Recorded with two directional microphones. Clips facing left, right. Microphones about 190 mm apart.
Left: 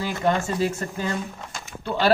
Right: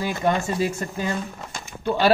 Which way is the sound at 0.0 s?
15° right (ahead or behind).